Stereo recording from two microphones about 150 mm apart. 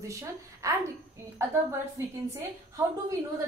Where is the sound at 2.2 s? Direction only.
20° right (ahead or behind).